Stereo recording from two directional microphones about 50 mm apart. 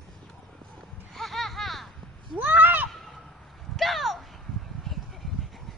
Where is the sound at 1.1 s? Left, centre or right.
Centre.